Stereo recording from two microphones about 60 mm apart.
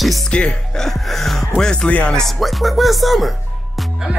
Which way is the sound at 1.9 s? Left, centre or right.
Left.